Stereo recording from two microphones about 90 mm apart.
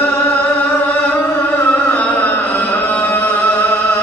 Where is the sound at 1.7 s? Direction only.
20° left (ahead or behind).